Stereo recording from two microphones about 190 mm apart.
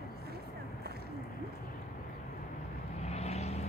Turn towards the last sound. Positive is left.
turn(degrees=35)  # may be behind; listen again after turning